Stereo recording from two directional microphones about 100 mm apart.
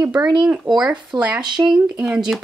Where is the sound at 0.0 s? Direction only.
15° right (ahead or behind).